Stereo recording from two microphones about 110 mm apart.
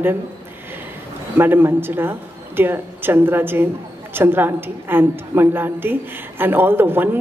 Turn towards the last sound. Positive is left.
turn(degrees=-20)  # may be behind; listen again after turning